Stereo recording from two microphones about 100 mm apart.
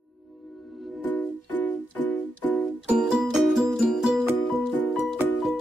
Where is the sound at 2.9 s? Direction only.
5° right (ahead or behind).